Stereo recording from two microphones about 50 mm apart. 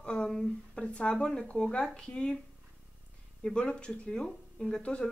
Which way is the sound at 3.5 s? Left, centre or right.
Centre.